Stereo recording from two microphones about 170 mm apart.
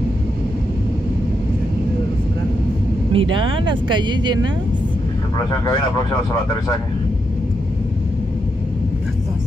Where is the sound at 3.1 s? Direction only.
30° right (ahead or behind).